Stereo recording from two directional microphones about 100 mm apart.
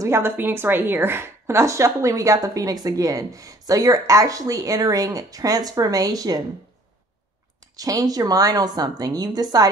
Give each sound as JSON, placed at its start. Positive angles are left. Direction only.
{"t": 0.0, "sound": "a woman's voice", "side_deg": -25}
{"t": 7.7, "sound": "a woman's voice", "side_deg": -35}